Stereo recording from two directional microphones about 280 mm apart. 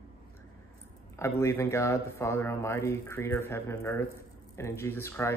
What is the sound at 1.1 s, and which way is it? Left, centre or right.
Speech, centre.